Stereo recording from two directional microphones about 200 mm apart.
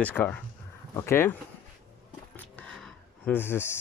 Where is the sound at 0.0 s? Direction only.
10° left (ahead or behind).